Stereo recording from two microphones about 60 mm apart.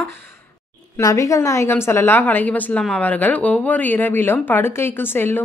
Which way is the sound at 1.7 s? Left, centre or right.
Left.